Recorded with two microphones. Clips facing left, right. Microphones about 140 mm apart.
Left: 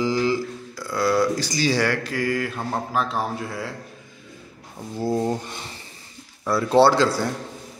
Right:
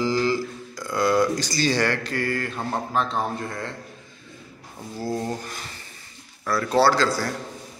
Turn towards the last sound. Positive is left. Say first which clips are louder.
# left 2 dB
turn(degrees=20)  # may be behind; listen again after turning